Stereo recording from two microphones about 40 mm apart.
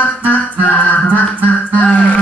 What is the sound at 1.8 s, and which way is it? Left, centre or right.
Music, left.